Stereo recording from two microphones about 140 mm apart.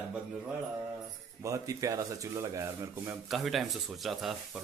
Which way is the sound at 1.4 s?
25° right (ahead or behind).